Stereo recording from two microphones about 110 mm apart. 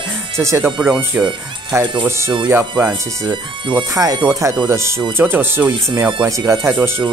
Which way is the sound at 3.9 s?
35° right (ahead or behind).